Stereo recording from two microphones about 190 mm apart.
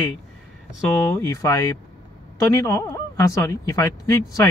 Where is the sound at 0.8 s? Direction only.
10° left (ahead or behind).